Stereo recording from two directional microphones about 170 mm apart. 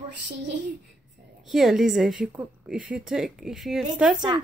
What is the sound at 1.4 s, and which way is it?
A woman's voice, centre (ahead or behind).